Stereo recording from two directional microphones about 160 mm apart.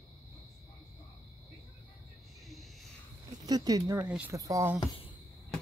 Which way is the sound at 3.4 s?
25° right (ahead or behind).